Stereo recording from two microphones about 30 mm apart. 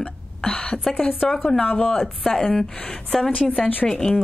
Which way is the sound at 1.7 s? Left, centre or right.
Left.